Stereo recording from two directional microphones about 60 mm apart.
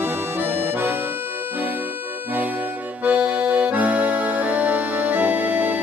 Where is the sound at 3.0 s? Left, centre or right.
Right.